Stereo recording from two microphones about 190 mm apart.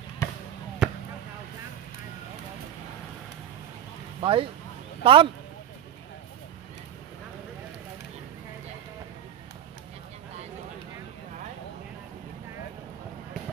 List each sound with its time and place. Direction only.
0.2 s basketball bounce: 15° left (ahead or behind)
0.8 s basketball bounce: 5° right (ahead or behind)
4.2 s speech: 30° right (ahead or behind)